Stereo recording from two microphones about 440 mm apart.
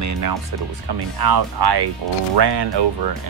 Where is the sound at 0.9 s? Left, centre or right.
Right.